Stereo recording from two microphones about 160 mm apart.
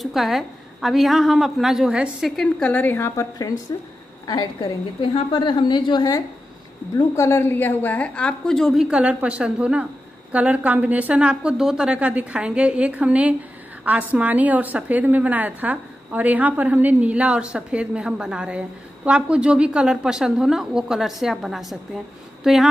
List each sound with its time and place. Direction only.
0.0 s a woman's voice: centre (ahead or behind)